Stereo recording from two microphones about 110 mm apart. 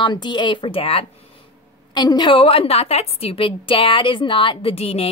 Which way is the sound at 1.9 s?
40° left (ahead or behind).